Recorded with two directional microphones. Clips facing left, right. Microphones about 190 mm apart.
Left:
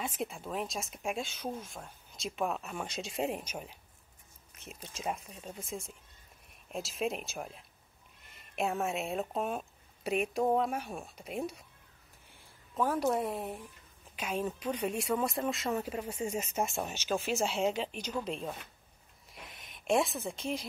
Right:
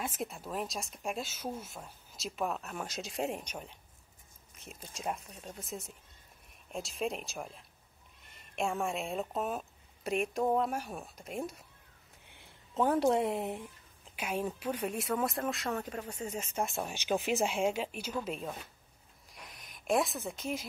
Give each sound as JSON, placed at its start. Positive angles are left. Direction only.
{"t": 0.0, "sound": "a woman's voice", "side_deg": 0}
{"t": 12.4, "sound": "speech", "side_deg": -25}
{"t": 14.1, "sound": "speech", "side_deg": -10}
{"t": 16.9, "sound": "speech", "side_deg": -15}
{"t": 19.3, "sound": "a sound", "side_deg": 0}